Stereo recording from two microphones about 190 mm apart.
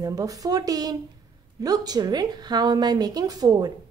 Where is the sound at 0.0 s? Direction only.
20° right (ahead or behind).